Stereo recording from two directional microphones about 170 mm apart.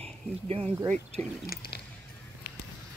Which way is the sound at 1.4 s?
65° left (ahead or behind).